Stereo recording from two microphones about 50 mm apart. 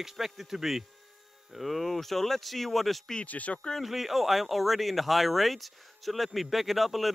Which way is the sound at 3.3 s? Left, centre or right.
Left.